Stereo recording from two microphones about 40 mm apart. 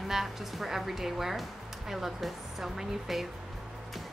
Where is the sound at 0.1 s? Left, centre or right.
Centre.